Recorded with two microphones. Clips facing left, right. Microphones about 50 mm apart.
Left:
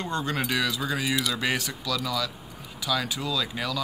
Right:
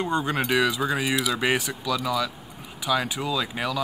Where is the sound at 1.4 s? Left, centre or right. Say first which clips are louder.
Right 4 dB; centre.